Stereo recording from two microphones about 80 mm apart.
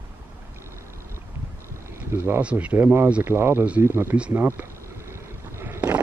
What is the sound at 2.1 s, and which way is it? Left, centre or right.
Speech, right.